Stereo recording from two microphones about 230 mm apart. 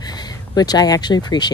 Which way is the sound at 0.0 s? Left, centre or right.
Centre.